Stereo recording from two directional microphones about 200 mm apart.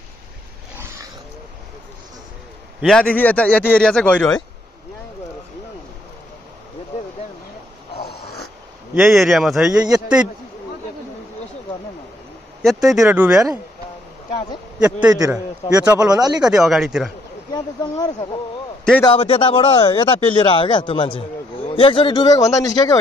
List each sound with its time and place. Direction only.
2.8 s a man's voice: 5° left (ahead or behind)
8.0 s dog: 50° left (ahead or behind)
8.9 s speech: centre (ahead or behind)
12.6 s speech: centre (ahead or behind)
14.8 s speech: 5° right (ahead or behind)
16.1 s speech: 20° right (ahead or behind)
16.3 s speech: 5° right (ahead or behind)
17.9 s speech: 20° left (ahead or behind)